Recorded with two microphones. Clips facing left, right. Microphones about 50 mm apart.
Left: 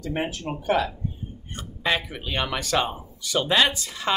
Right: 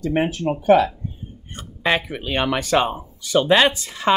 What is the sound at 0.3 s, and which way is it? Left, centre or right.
Speech, right.